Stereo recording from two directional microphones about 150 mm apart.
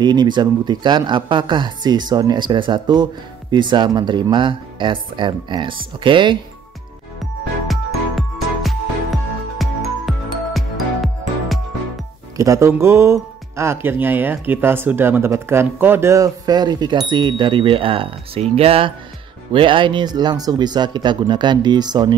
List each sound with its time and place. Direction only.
0.0 s speech: 30° right (ahead or behind)
7.6 s music: centre (ahead or behind)
12.4 s speech: 20° right (ahead or behind)